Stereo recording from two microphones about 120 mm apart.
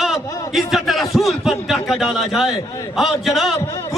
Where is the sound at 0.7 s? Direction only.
Centre (ahead or behind).